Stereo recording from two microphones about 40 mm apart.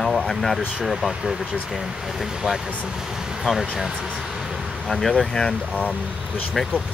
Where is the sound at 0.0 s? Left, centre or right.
Centre.